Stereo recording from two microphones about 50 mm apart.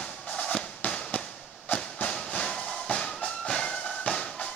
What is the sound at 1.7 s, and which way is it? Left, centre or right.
Train, left.